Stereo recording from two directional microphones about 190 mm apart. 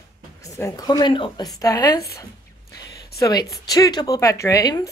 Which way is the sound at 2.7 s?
20° left (ahead or behind).